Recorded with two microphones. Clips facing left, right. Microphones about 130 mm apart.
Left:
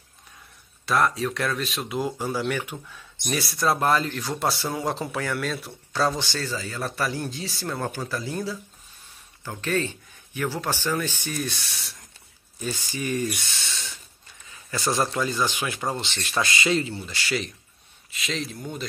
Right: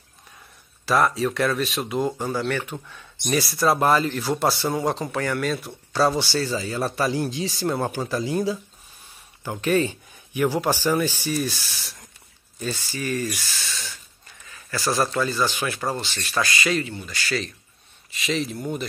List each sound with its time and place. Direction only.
0.8 s speech: centre (ahead or behind)
12.5 s speech: 15° left (ahead or behind)
18.1 s speech: centre (ahead or behind)